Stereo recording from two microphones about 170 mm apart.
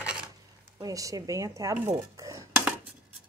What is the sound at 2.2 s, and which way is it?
Dishes, 20° right (ahead or behind).